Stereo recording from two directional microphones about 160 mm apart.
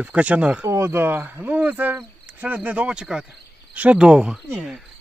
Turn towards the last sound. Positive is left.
turn(degrees=0)  # may be behind; listen again after turning